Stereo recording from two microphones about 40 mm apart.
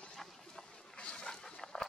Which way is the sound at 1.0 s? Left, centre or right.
Left.